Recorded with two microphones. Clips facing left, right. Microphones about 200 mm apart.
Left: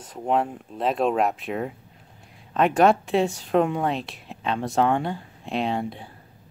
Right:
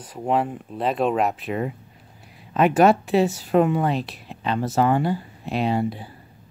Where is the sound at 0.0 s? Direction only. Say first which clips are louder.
Right 1 dB; 5° right (ahead or behind).